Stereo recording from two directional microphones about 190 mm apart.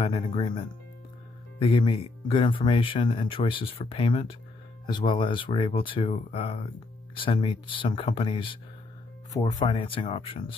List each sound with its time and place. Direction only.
0.0 s speech: 30° left (ahead or behind)
1.6 s speech: 25° left (ahead or behind)